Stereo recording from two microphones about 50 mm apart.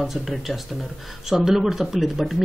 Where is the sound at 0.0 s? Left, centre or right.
Centre.